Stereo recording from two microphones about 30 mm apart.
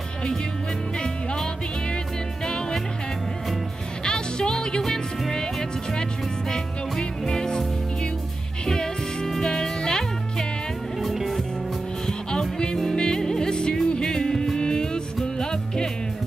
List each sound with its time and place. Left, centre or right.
1.0 s music: left
4.0 s music: left
11.0 s music: centre
12.1 s music: left